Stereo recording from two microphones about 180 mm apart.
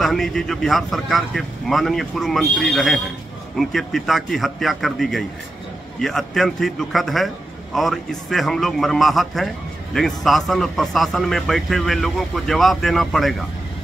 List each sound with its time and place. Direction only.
0.0 s a man's voice: centre (ahead or behind)